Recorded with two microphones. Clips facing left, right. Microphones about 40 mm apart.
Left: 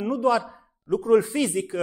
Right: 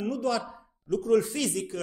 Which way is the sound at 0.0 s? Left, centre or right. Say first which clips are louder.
Left 6 dB; left.